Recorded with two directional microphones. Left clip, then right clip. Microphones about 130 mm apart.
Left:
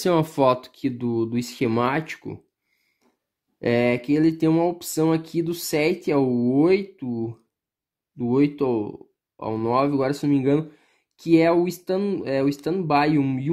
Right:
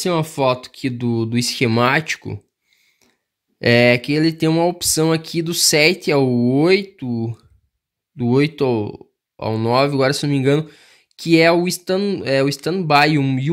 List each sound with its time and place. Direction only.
0.0 s speech: 5° right (ahead or behind)
0.8 s speech: 25° right (ahead or behind)
3.6 s speech: 30° right (ahead or behind)